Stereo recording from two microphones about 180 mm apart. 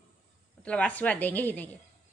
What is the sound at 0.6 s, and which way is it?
A woman's voice, 5° left (ahead or behind).